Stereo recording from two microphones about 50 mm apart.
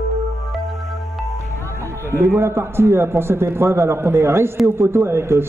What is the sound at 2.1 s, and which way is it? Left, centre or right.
A man's voice, right.